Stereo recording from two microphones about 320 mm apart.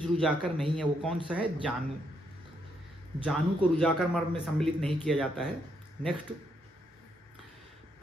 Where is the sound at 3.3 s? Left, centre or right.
Centre.